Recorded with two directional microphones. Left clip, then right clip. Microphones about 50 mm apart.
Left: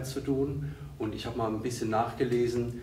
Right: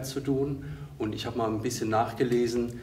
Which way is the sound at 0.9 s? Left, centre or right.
Left.